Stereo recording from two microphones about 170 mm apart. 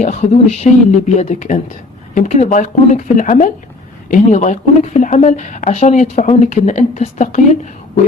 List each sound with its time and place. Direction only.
0.0 s speech: 40° left (ahead or behind)